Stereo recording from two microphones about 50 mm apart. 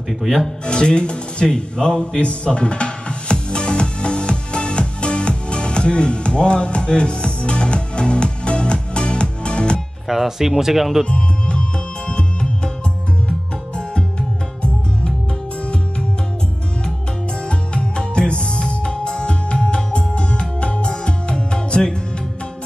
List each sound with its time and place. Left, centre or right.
0.2 s speech: centre
0.7 s music: centre
10.0 s speech: centre
11.1 s music: left
17.5 s music: centre